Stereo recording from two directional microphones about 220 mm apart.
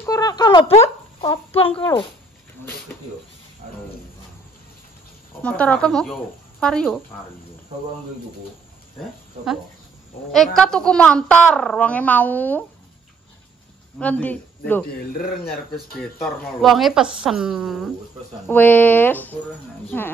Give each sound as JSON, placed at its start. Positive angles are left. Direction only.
{"t": 0.0, "sound": "speech", "side_deg": 15}
{"t": 5.4, "sound": "a woman's voice", "side_deg": 5}
{"t": 10.3, "sound": "a woman's voice", "side_deg": 0}
{"t": 13.9, "sound": "a woman's voice", "side_deg": 5}